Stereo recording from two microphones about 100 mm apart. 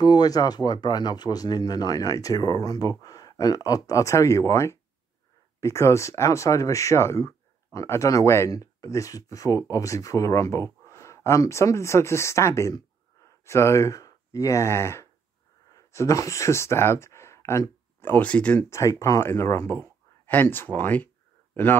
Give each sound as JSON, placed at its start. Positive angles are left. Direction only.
{"t": 0.0, "sound": "speech", "side_deg": 45}
{"t": 18.6, "sound": "speech", "side_deg": 30}